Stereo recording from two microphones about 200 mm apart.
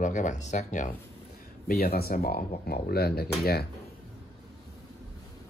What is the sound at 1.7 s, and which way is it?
Speech, 50° left (ahead or behind).